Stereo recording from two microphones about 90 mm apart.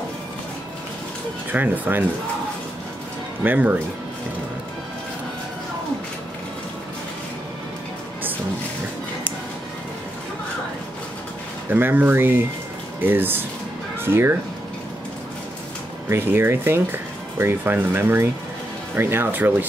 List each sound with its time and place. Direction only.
1.5 s speech: 20° right (ahead or behind)
3.4 s speech: 20° right (ahead or behind)
11.7 s speech: 20° right (ahead or behind)
16.1 s speech: 25° right (ahead or behind)